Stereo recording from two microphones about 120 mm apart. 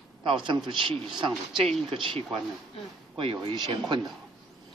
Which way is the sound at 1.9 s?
45° right (ahead or behind).